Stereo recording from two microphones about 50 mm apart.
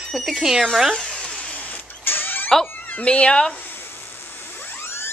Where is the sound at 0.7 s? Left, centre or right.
Centre.